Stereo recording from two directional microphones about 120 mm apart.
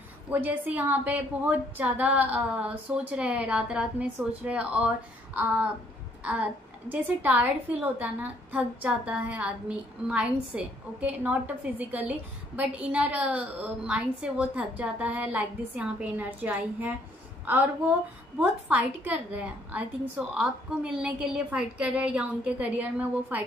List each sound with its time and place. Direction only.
0.3 s a woman's voice: 15° right (ahead or behind)